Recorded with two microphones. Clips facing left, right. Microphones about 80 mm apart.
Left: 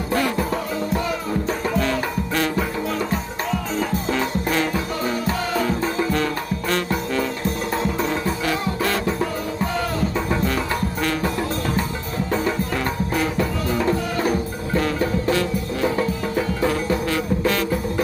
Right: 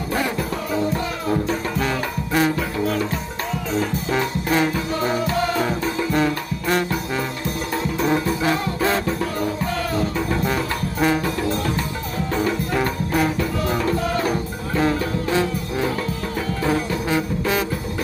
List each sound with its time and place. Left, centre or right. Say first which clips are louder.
1.8 s music: left 1 dB; centre
4.1 s music: right 3 dB; centre
6.1 s music: right 2 dB; centre
8.5 s music: right 2 dB; right
10.5 s music: even; centre
12.7 s music: right 2 dB; centre
14.8 s music: right 1 dB; centre
16.6 s music: right 1 dB; centre